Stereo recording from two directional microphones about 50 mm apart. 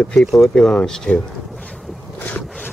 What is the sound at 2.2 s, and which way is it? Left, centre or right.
Boat, left.